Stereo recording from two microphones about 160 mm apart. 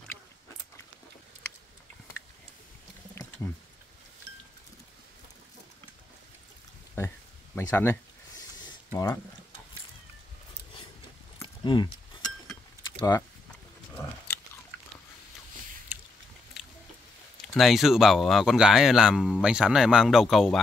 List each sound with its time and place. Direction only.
7.5 s speech: 15° left (ahead or behind)
11.4 s keys jangling: 30° left (ahead or behind)
15.9 s a sound: 10° right (ahead or behind)
17.6 s speech: centre (ahead or behind)